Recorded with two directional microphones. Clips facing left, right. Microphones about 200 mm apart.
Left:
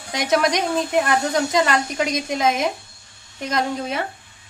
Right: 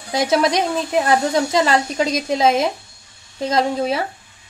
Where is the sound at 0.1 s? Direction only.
30° right (ahead or behind).